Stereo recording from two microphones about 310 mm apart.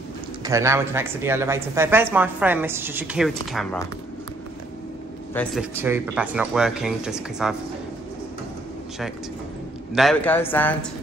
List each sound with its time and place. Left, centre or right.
0.4 s speech: centre
5.3 s speech: centre
9.9 s speech: centre